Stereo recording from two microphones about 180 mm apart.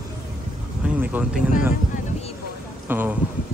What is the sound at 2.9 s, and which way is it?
Speech, 10° right (ahead or behind).